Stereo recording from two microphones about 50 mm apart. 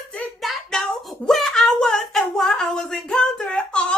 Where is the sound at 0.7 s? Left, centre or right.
Centre.